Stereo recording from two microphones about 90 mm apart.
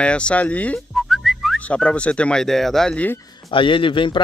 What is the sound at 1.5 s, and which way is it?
Speech, 10° left (ahead or behind).